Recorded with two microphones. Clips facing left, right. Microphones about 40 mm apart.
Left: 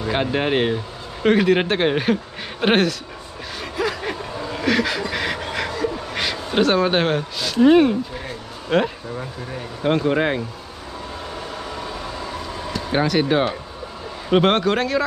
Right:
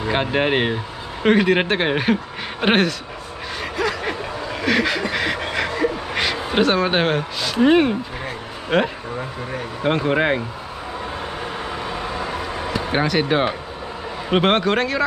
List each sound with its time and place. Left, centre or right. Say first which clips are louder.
0.0 s speech: right 1 dB; centre
4.0 s a sound: right 2 dB; centre
5.1 s pant: right 2 dB; centre
5.4 s a sound: right 2 dB; centre
6.5 s speech: left 1 dB; centre
11.4 s air conditioning: right 3 dB; right
12.9 s speech: left 1 dB; centre